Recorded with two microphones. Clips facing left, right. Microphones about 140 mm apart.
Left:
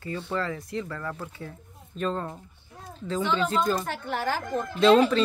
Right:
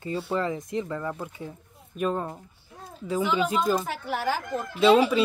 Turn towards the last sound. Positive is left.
turn(degrees=-10)  # may be behind; listen again after turning